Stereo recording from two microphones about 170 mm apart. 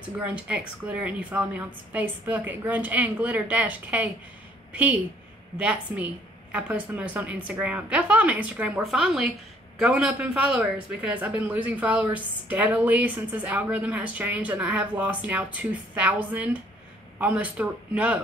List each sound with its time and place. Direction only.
0.2 s speech: 5° right (ahead or behind)
5.6 s speech: 5° right (ahead or behind)